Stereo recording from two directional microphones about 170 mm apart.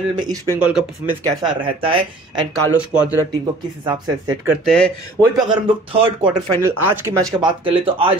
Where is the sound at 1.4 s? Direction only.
30° right (ahead or behind).